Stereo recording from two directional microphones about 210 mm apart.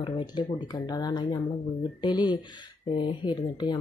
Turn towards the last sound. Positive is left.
turn(degrees=20)  # may be behind; listen again after turning